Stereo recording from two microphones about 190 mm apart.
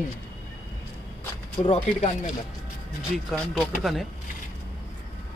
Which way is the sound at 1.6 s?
35° left (ahead or behind).